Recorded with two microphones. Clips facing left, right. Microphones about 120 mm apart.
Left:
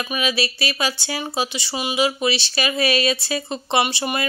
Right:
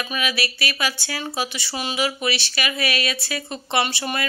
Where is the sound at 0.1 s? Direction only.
25° left (ahead or behind).